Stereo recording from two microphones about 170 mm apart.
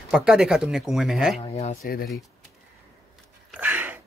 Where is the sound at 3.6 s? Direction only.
10° right (ahead or behind).